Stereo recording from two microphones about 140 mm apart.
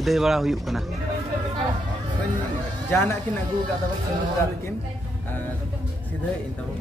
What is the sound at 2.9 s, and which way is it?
Speech, 15° left (ahead or behind).